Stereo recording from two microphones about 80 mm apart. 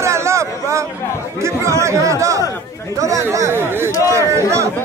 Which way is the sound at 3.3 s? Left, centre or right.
Right.